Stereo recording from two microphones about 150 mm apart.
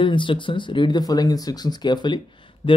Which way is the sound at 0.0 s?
35° left (ahead or behind).